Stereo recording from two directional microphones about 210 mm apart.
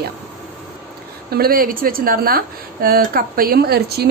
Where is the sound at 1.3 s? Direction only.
45° right (ahead or behind).